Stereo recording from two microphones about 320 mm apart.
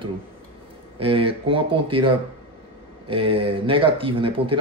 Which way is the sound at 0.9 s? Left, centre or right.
Centre.